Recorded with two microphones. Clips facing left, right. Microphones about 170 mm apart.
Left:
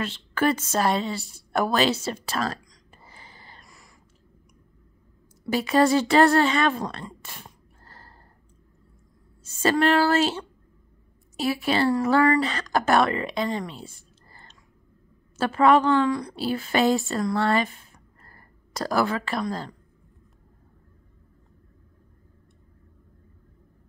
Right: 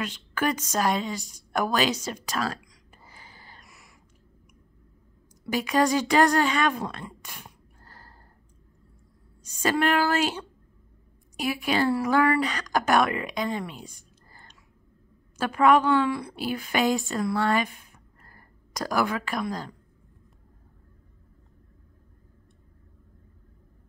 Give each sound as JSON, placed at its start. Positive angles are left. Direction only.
{"t": 0.0, "sound": "a woman's voice", "side_deg": -10}
{"t": 2.0, "sound": "a sound", "side_deg": -10}
{"t": 5.5, "sound": "a woman's voice", "side_deg": -10}
{"t": 9.4, "sound": "a woman's voice", "side_deg": -10}
{"t": 13.9, "sound": "whispering", "side_deg": -10}
{"t": 15.3, "sound": "a woman's voice", "side_deg": -10}
{"t": 17.9, "sound": "a sound", "side_deg": -10}